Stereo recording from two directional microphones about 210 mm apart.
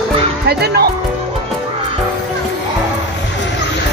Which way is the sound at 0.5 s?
50° right (ahead or behind).